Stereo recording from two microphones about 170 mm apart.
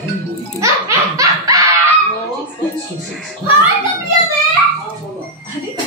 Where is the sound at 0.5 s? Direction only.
20° right (ahead or behind).